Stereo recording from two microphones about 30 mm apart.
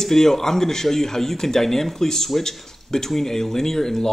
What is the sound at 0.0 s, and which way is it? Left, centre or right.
Speech, centre.